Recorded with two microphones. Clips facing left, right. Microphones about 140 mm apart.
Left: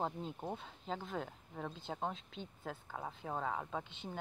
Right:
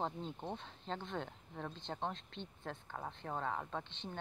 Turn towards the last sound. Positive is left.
turn(degrees=5)  # may be behind; listen again after turning